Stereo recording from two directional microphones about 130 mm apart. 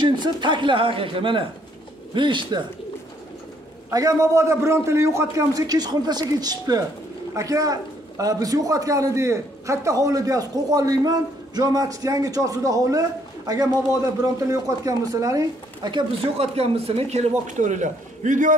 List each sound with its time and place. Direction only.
0.0 s speech: 35° right (ahead or behind)
3.9 s a man's voice: 25° right (ahead or behind)
16.3 s a man's voice: 50° right (ahead or behind); by 18.5 s 75° right (ahead or behind)